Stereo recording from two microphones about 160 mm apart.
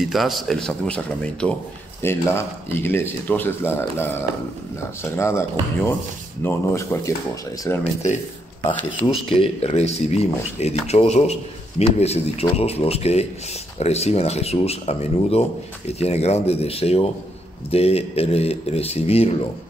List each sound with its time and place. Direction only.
0.0 s a man's voice: centre (ahead or behind); by 7.8 s 15° left (ahead or behind)
9.3 s speech: 35° left (ahead or behind)